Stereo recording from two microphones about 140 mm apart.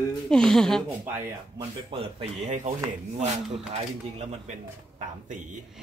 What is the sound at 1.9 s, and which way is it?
Speech, 40° right (ahead or behind).